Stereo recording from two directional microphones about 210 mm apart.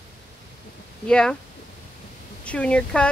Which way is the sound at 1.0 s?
5° left (ahead or behind).